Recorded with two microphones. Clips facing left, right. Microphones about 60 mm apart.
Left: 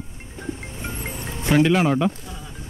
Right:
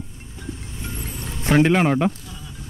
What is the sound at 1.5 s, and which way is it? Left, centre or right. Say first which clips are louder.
Speech: right 1 dB; right.